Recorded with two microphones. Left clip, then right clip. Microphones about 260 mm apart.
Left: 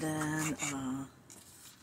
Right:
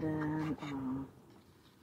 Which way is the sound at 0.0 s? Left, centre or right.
Centre.